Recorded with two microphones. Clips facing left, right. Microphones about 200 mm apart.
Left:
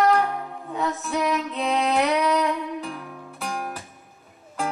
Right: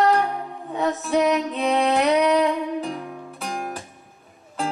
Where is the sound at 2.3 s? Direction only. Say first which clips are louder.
Right 4 dB; 30° right (ahead or behind).